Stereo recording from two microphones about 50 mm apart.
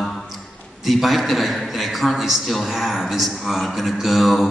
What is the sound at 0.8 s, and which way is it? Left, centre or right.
A man's voice, centre.